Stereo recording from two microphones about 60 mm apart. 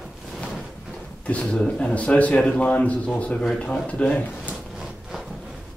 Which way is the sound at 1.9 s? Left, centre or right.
Left.